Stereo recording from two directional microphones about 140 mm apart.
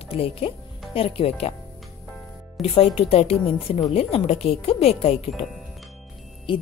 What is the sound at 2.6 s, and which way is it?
Speech, centre (ahead or behind).